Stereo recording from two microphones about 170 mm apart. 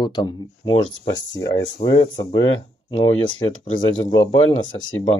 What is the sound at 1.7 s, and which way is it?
Speech, 25° left (ahead or behind).